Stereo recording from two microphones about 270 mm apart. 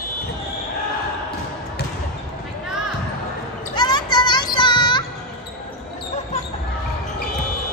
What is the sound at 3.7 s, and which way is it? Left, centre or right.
Child singing, centre.